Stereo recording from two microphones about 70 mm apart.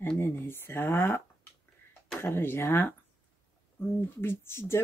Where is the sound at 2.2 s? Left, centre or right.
Left.